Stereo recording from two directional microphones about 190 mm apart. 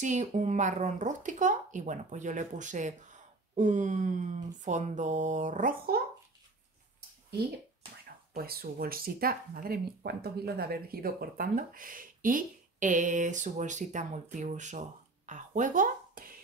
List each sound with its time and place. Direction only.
0.0 s speech: 40° right (ahead or behind)
8.4 s speech: 50° right (ahead or behind)